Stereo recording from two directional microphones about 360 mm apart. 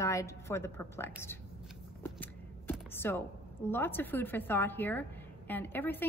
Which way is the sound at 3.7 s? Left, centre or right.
Centre.